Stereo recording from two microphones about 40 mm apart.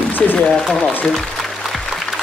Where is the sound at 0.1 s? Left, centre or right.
Left.